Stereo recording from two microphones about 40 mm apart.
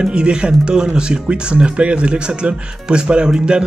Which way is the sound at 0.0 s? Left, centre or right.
Right.